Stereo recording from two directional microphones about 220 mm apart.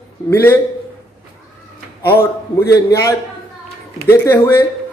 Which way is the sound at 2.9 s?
15° left (ahead or behind).